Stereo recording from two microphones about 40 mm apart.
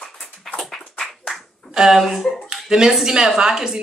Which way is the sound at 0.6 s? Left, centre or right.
Centre.